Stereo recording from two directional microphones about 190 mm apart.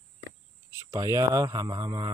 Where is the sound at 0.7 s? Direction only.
15° right (ahead or behind).